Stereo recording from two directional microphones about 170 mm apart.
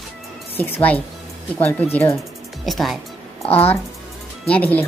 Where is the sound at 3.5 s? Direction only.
35° left (ahead or behind).